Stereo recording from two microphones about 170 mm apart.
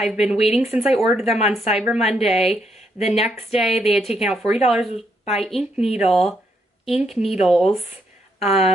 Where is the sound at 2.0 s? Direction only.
35° left (ahead or behind).